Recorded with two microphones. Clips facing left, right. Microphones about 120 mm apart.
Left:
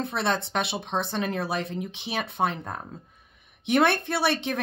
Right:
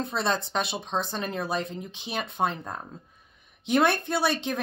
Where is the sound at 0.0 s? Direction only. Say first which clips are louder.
Left 1 dB; 65° left (ahead or behind).